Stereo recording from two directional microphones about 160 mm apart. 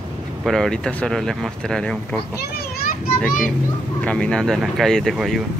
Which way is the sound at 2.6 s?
65° left (ahead or behind).